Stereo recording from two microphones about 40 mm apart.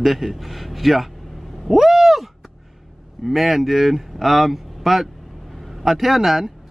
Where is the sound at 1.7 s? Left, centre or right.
Centre.